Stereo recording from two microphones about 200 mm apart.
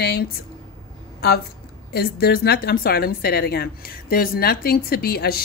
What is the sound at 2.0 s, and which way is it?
A woman's voice, 50° left (ahead or behind).